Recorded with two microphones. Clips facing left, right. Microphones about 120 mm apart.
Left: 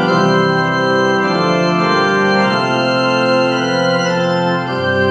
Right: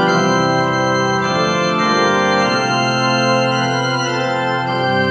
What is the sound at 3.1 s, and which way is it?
Music, 50° left (ahead or behind).